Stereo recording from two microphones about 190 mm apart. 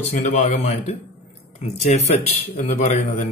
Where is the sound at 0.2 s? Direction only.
40° left (ahead or behind).